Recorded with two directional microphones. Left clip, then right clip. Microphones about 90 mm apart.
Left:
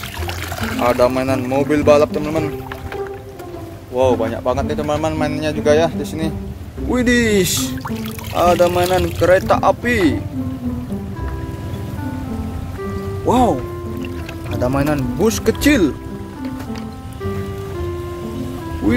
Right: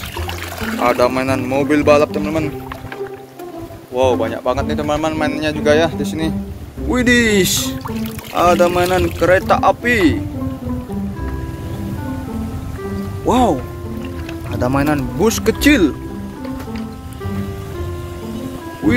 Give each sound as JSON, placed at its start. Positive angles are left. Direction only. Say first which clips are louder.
{"t": 0.8, "sound": "speech", "louder": "even", "side_deg": 5}
{"t": 1.9, "sound": "a man's voice", "louder": "left 1 dB", "side_deg": 20}
{"t": 3.9, "sound": "speech", "louder": "even", "side_deg": 20}
{"t": 9.2, "sound": "a man's voice", "louder": "even", "side_deg": 25}
{"t": 13.2, "sound": "speech", "louder": "even", "side_deg": 5}
{"t": 14.6, "sound": "speech", "louder": "right 1 dB", "side_deg": 0}
{"t": 15.6, "sound": "a man's voice", "louder": "right 2 dB", "side_deg": 20}